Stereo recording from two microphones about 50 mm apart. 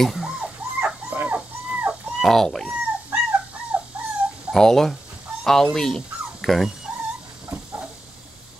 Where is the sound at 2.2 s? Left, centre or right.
Centre.